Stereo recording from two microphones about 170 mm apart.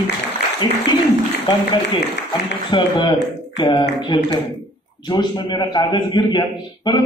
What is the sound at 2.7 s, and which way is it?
A man's voice, 25° left (ahead or behind).